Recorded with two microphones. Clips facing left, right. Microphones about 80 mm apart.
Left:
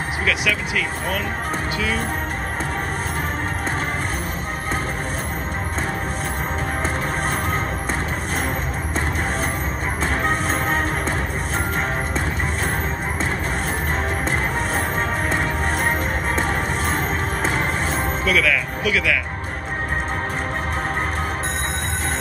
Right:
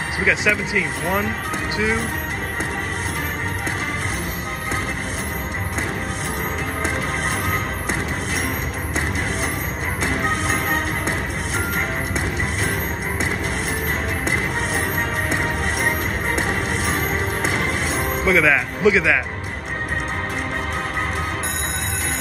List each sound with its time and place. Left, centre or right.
0.2 s speech: right
10.0 s music: left
18.2 s music: right